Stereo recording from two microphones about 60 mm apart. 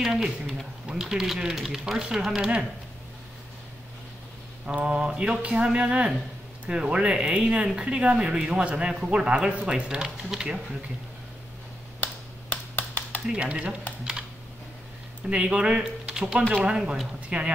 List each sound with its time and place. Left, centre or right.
0.0 s speech: centre
4.6 s speech: centre
12.0 s finger snapping: left
13.3 s speech: centre
15.2 s speech: centre